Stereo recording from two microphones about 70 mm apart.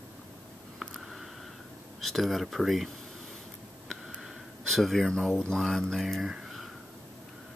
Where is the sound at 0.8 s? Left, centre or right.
Centre.